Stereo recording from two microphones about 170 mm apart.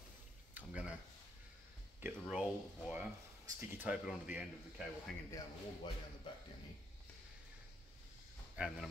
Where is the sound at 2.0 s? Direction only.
15° right (ahead or behind).